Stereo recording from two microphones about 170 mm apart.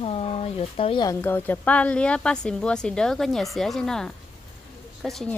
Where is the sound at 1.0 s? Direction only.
15° left (ahead or behind).